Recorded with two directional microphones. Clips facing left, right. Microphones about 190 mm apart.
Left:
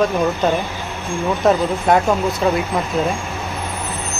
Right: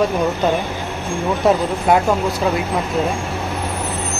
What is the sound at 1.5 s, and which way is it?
Speech, centre (ahead or behind).